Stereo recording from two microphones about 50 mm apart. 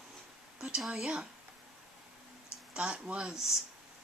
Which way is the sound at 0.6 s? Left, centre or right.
Centre.